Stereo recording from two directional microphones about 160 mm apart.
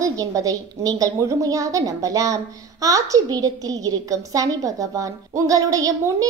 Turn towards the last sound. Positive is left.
turn(degrees=-20)  # may be behind; listen again after turning